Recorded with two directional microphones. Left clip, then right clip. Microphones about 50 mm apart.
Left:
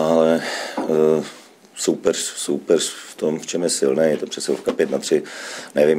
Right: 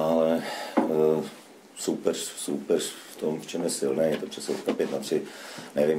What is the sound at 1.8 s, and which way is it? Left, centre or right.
Speech, left.